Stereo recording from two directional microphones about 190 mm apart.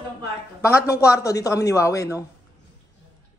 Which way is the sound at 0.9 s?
15° left (ahead or behind).